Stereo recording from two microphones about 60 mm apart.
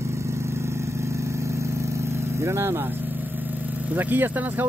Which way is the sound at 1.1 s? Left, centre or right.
Right.